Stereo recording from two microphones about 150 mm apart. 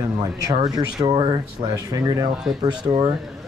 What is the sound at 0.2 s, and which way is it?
Speech, 25° right (ahead or behind).